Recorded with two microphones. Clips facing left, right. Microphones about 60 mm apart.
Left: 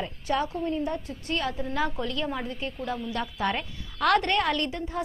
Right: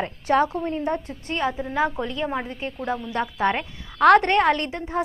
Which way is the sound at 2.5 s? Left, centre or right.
Centre.